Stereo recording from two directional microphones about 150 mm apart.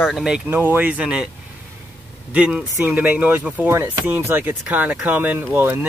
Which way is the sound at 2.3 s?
5° right (ahead or behind).